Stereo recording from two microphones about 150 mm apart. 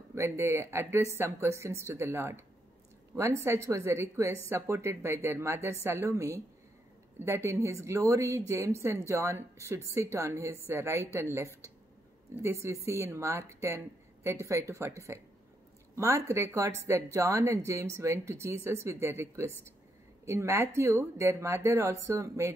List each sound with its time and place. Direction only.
0.1 s a woman's voice: 20° right (ahead or behind)